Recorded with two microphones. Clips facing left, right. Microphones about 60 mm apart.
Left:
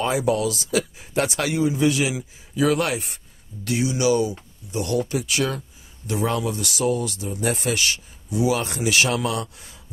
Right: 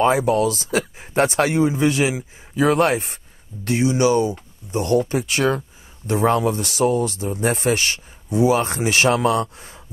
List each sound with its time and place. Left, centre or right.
0.0 s speech: right